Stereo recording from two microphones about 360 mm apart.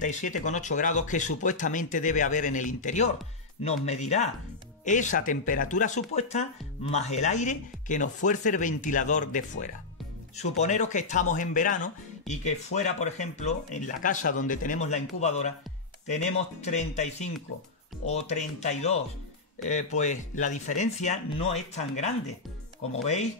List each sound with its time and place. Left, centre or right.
0.0 s speech: left